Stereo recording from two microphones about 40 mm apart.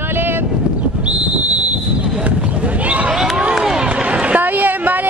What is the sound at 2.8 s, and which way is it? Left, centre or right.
Basketball bounce, right.